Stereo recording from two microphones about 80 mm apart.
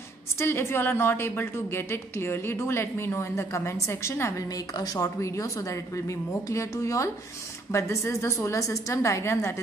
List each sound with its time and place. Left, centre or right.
0.4 s a woman's voice: left
4.7 s a woman's voice: left